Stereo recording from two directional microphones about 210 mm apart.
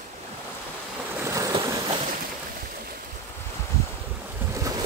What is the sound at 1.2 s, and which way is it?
Boat, 15° right (ahead or behind).